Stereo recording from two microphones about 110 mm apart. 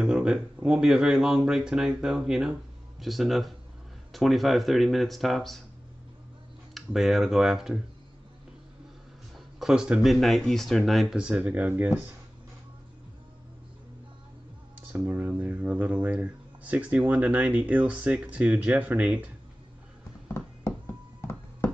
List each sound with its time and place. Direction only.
0.0 s a sound: 5° right (ahead or behind)
0.7 s speech: 5° right (ahead or behind)
6.7 s speech: centre (ahead or behind)
9.6 s speech: 5° right (ahead or behind)
14.8 s speech: 15° right (ahead or behind)
21.2 s a sound: 25° left (ahead or behind)